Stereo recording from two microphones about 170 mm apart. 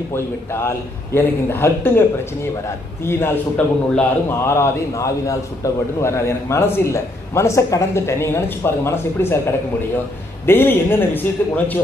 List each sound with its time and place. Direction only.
0.1 s a man's voice: 15° left (ahead or behind)
3.1 s a man's voice: 10° left (ahead or behind)
10.4 s a man's voice: 10° left (ahead or behind)